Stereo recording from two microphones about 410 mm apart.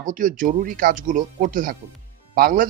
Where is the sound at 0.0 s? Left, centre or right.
Centre.